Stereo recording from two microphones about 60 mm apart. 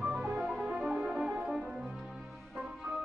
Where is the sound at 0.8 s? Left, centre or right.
Centre.